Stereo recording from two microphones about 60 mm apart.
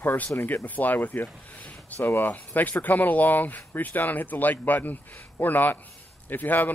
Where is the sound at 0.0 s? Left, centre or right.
Left.